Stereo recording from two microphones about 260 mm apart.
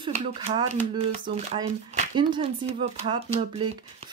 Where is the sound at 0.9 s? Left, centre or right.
Right.